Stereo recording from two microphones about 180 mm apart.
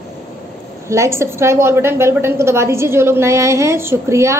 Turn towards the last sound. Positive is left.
turn(degrees=-15)  # may be behind; listen again after turning